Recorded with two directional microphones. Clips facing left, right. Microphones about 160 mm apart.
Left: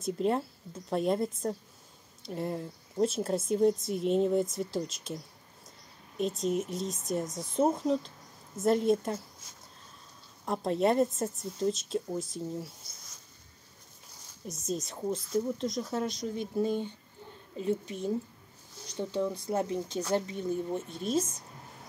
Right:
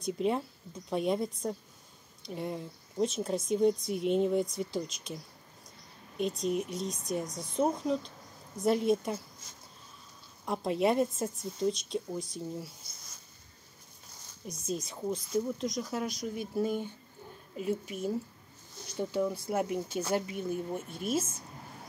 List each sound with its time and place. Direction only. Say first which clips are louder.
0.0 s a woman's voice: left 1 dB; centre (ahead or behind)
10.4 s a woman's voice: left 1 dB; centre (ahead or behind)
14.4 s a woman's voice: left 1 dB; centre (ahead or behind)
16.1 s speech: left 2 dB; 25° left (ahead or behind)
17.6 s speech: left 2 dB; 10° right (ahead or behind)